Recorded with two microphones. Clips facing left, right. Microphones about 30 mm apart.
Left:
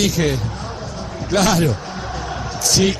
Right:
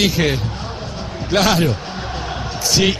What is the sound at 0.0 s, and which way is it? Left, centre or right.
Speech, right.